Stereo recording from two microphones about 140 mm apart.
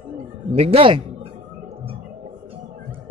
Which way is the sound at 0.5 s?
45° right (ahead or behind).